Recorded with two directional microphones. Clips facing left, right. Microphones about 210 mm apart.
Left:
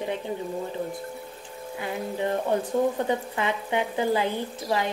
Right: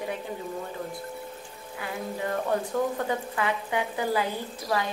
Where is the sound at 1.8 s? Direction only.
20° left (ahead or behind).